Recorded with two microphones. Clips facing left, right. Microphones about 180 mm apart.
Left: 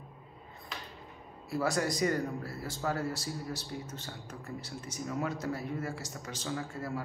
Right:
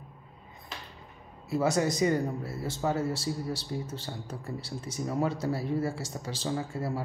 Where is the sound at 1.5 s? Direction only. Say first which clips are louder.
Right 4 dB; 20° right (ahead or behind).